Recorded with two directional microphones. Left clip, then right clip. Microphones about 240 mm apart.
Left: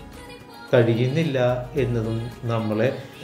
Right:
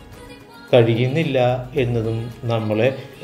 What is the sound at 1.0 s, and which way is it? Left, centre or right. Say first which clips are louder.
Speech: right 3 dB; right.